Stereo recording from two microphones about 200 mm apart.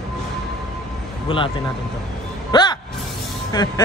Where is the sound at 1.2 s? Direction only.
25° left (ahead or behind).